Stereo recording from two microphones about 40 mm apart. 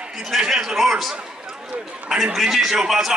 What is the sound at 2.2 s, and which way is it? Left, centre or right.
Speech, centre.